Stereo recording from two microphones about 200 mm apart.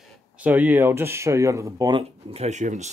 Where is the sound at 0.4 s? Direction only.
10° right (ahead or behind).